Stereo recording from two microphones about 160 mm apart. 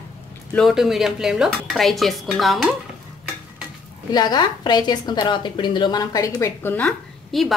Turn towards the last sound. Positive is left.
turn(degrees=5)  # may be behind; listen again after turning